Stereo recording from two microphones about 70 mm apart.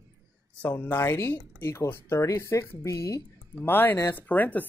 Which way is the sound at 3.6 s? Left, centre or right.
Left.